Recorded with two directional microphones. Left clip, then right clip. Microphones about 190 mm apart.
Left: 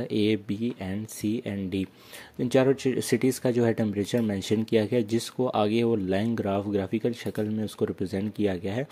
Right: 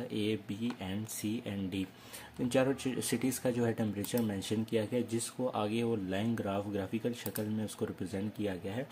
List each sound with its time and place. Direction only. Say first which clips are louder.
0.1 s speech: left 11 dB; 40° left (ahead or behind)